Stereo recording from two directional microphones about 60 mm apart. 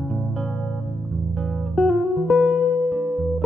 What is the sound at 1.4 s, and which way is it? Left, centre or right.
Music, centre.